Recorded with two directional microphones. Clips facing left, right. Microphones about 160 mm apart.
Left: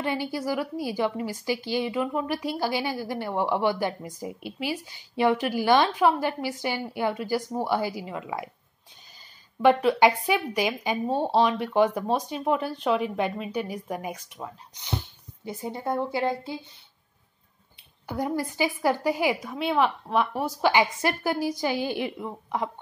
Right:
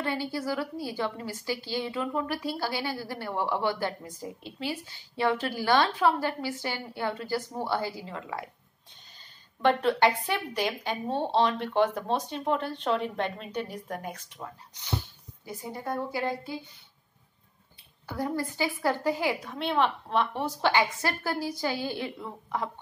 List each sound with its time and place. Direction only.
0.0 s a woman's voice: 15° left (ahead or behind)
9.6 s a woman's voice: 10° left (ahead or behind)
15.4 s a woman's voice: 25° left (ahead or behind)
18.0 s a woman's voice: 20° left (ahead or behind)